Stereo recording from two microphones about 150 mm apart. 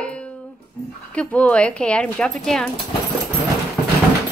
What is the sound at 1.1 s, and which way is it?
Female singing, 10° left (ahead or behind).